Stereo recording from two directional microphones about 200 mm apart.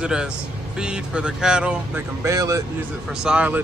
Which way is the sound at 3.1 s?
5° right (ahead or behind).